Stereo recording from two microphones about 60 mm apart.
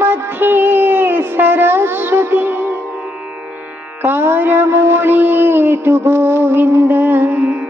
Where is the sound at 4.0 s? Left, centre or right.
Right.